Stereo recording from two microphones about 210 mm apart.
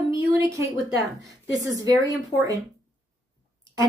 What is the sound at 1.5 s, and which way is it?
A woman's voice, 15° right (ahead or behind).